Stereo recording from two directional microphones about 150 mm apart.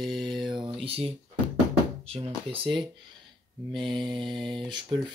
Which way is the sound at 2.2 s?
35° right (ahead or behind).